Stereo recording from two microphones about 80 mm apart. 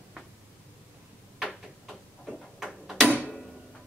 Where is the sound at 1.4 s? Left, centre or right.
Centre.